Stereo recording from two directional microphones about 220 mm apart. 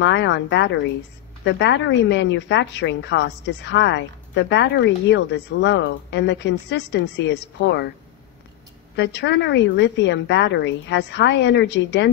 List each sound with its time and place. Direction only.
0.0 s a woman's voice: 55° left (ahead or behind)
8.9 s a woman's voice: 50° left (ahead or behind)